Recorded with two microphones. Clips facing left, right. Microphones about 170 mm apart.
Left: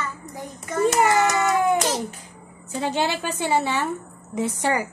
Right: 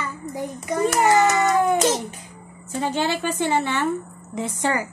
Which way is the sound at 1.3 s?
20° right (ahead or behind).